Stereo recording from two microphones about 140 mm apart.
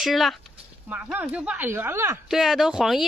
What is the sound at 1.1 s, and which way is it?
Speech, 15° right (ahead or behind).